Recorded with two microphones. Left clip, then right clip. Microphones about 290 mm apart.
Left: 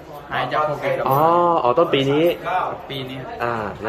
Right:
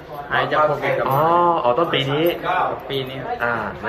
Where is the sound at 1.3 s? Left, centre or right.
Left.